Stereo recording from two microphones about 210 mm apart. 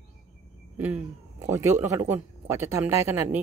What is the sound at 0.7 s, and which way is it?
A man's voice, 10° right (ahead or behind).